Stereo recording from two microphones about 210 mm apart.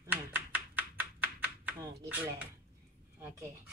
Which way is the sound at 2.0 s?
5° right (ahead or behind).